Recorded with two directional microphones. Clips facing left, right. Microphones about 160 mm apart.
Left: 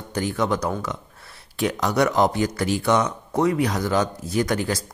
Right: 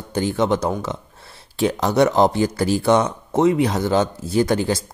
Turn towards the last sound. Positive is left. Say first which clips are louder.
# right 4 dB
turn(degrees=-25)  # may be behind; listen again after turning